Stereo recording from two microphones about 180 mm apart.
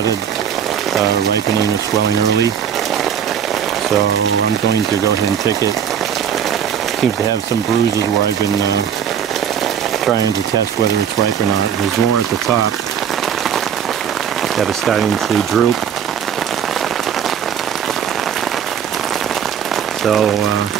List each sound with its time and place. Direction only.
14.6 s speech: centre (ahead or behind)